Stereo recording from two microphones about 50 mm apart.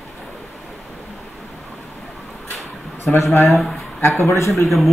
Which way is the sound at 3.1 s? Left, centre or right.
Left.